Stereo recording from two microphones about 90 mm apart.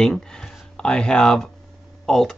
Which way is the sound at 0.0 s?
10° left (ahead or behind).